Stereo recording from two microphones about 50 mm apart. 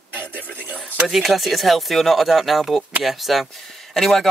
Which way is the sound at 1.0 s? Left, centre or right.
Centre.